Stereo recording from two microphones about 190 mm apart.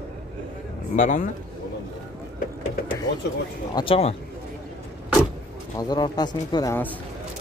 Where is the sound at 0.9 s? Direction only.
40° left (ahead or behind).